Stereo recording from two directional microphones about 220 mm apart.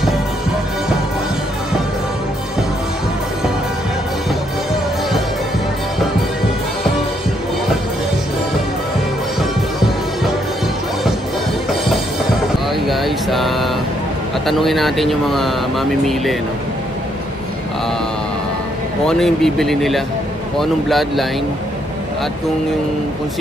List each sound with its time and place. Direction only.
12.8 s a sound: centre (ahead or behind)
14.4 s speech: centre (ahead or behind)
19.0 s speech: centre (ahead or behind)